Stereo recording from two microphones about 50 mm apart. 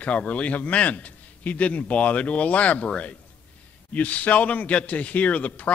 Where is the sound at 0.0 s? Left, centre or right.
Left.